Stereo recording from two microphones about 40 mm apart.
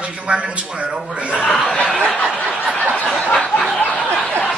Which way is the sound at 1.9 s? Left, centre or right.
Centre.